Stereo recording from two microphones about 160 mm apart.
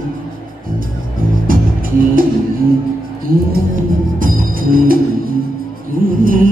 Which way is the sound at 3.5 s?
60° right (ahead or behind).